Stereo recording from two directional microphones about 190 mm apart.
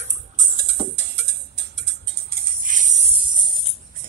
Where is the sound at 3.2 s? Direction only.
25° right (ahead or behind).